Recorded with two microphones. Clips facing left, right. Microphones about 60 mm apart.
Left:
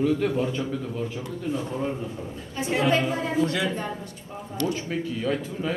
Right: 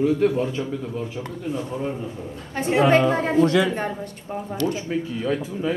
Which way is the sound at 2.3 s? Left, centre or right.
Right.